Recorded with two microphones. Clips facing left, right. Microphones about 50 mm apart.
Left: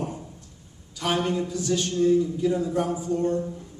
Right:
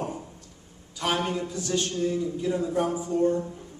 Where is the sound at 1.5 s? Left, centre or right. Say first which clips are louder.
Left 2 dB; centre.